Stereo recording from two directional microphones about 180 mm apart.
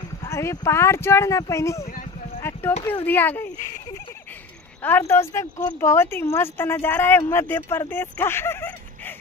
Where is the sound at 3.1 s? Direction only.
10° left (ahead or behind).